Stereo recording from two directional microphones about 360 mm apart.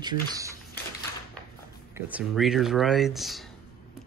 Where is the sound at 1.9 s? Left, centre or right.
Centre.